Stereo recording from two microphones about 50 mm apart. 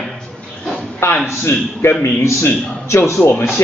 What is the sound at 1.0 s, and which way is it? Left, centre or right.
Speech, left.